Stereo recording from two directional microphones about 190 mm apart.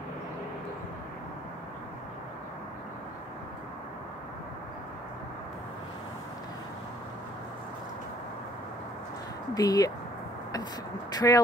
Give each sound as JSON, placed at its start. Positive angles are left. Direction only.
{"t": 9.5, "sound": "speech", "side_deg": 20}
{"t": 11.1, "sound": "speech", "side_deg": 20}